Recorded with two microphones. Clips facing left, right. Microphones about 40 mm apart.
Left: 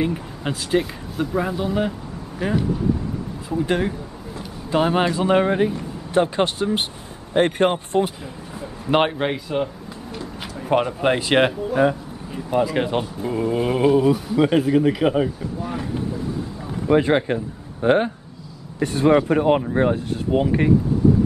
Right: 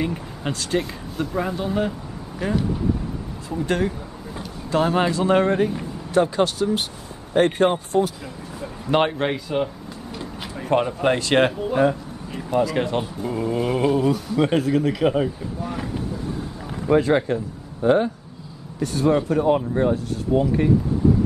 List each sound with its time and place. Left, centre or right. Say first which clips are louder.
0.0 s speech: left 2 dB; centre
6.1 s speech: even; left
8.5 s speech: left 1 dB; centre
9.3 s speech: even; centre
10.7 s speech: left 1 dB; centre
16.9 s speech: left 1 dB; left
17.8 s speech: even; left